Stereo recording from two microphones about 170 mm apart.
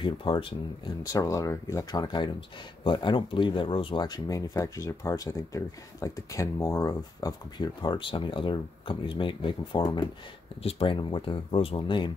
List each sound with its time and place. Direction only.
0.0 s speech: 30° left (ahead or behind)